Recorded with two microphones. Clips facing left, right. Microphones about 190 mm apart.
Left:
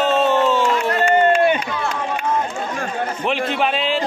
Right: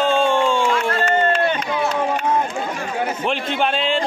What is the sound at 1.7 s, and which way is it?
Run, 15° right (ahead or behind).